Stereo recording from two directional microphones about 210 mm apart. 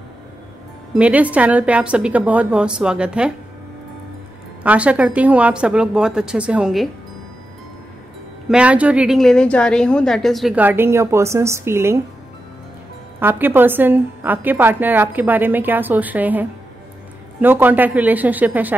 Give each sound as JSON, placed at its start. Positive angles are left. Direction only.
{"t": 0.9, "sound": "a woman's voice", "side_deg": -5}
{"t": 4.6, "sound": "a woman's voice", "side_deg": -5}
{"t": 8.5, "sound": "a woman's voice", "side_deg": -5}
{"t": 13.2, "sound": "a woman's voice", "side_deg": -10}